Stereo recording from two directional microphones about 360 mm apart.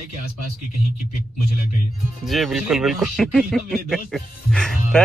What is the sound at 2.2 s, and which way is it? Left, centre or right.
Speech, centre.